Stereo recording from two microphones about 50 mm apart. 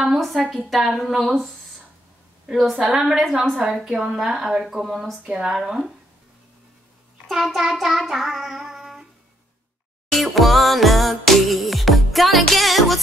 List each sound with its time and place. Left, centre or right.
0.7 s speech: centre
2.5 s a woman's voice: centre
7.2 s child singing: centre
10.1 s music: centre